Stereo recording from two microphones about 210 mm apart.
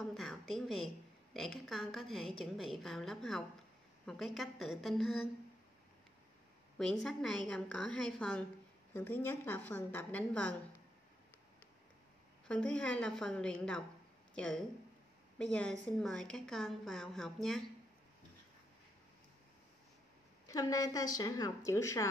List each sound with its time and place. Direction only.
0.0 s a woman's voice: centre (ahead or behind)
6.8 s a woman's voice: centre (ahead or behind)
12.4 s a woman's voice: 5° left (ahead or behind)
20.4 s a woman's voice: 15° left (ahead or behind)